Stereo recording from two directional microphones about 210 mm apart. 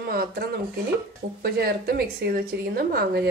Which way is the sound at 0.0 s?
50° right (ahead or behind).